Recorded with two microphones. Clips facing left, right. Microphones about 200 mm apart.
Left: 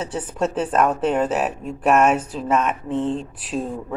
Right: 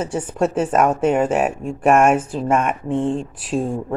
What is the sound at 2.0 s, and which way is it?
Speech, 10° right (ahead or behind).